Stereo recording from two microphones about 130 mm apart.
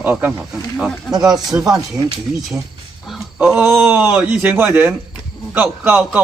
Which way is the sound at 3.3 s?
10° right (ahead or behind).